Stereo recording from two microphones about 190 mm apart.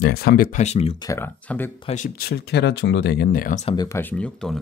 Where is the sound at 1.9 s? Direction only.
50° left (ahead or behind).